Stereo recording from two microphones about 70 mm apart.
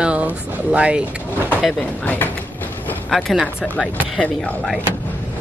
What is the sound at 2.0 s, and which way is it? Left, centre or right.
Speech, left.